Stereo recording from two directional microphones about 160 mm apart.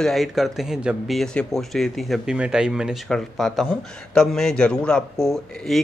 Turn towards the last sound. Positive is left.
turn(degrees=0)  # may be behind; listen again after turning